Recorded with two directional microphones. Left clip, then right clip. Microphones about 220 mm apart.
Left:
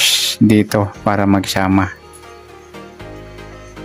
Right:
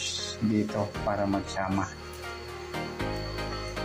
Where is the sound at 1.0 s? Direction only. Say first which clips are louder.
Left 13 dB; 60° left (ahead or behind).